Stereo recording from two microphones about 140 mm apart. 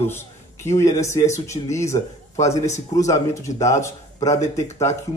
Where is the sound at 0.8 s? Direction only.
20° left (ahead or behind).